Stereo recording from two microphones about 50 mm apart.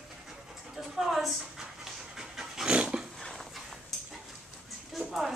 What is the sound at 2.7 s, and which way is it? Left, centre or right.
Dog, right.